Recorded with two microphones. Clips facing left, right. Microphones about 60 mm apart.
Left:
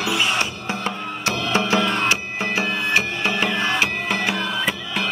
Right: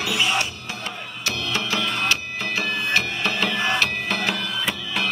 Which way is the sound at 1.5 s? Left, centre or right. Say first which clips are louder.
Left 6 dB; left.